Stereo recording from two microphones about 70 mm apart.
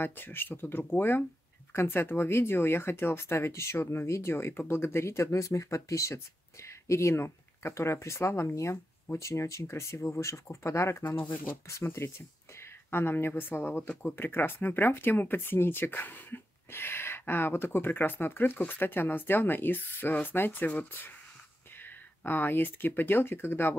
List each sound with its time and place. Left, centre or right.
0.0 s speech: left